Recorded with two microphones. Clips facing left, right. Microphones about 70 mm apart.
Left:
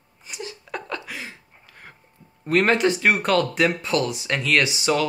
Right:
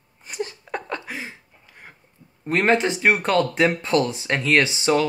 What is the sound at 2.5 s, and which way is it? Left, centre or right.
Speech, right.